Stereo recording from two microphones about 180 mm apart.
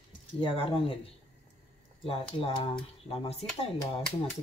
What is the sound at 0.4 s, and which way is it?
Speech, 30° left (ahead or behind).